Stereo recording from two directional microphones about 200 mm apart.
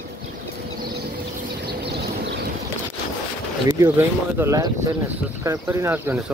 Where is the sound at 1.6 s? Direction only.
60° right (ahead or behind).